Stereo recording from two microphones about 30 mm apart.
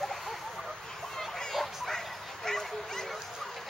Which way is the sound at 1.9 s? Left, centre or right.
Centre.